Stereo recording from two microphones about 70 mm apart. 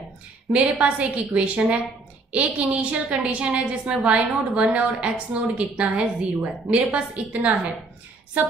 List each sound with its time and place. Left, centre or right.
0.5 s a woman's voice: centre